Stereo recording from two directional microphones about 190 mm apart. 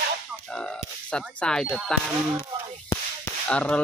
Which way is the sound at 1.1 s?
5° left (ahead or behind).